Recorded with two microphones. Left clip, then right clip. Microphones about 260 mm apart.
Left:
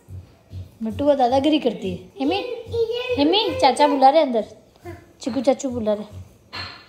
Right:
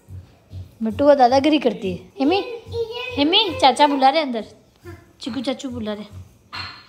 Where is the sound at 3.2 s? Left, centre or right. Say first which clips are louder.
Right 2 dB; right.